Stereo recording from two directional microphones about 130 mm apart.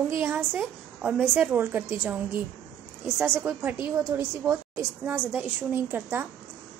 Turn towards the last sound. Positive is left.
turn(degrees=-15)  # may be behind; listen again after turning